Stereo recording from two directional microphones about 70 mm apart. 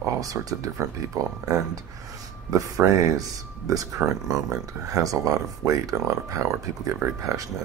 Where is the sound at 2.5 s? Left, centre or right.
Right.